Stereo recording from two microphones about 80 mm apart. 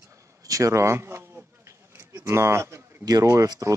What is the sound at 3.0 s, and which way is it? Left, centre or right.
Speech, right.